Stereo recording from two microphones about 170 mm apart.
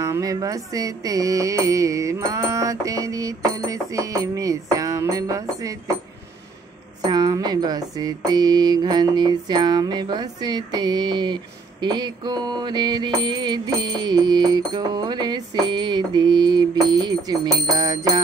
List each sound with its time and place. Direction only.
0.0 s mantra: 20° right (ahead or behind)
7.1 s mantra: 25° right (ahead or behind)